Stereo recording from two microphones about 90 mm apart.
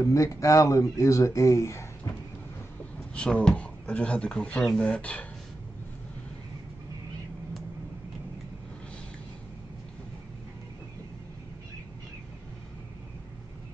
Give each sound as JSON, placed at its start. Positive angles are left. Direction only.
{"t": 0.0, "sound": "speech", "side_deg": 35}
{"t": 3.2, "sound": "speech", "side_deg": 10}